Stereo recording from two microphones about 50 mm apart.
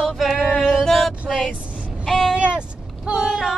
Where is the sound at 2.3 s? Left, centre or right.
Right.